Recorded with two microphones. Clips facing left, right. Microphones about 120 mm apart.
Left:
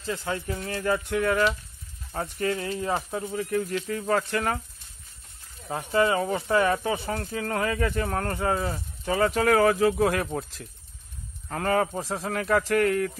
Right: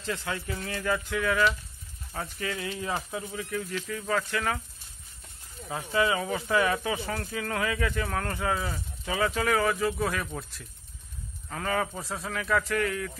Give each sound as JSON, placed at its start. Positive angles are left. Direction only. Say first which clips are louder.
{"t": 0.3, "sound": "speech", "louder": "left 3 dB", "side_deg": 30}
{"t": 5.7, "sound": "speech", "louder": "left 3 dB", "side_deg": 40}
{"t": 11.9, "sound": "speech", "louder": "left 5 dB", "side_deg": 35}